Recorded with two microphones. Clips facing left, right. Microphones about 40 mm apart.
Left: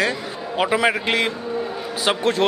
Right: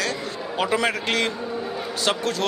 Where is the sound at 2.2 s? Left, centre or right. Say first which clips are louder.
Left 6 dB; left.